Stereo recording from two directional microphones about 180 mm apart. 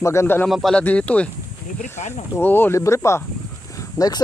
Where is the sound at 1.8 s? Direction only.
40° left (ahead or behind).